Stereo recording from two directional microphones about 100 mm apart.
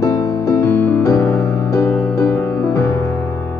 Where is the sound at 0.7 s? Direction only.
15° left (ahead or behind).